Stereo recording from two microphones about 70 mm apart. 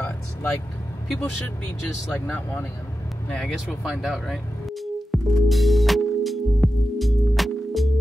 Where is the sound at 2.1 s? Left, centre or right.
Left.